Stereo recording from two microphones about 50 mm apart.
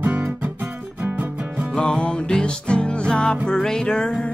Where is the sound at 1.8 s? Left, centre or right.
Centre.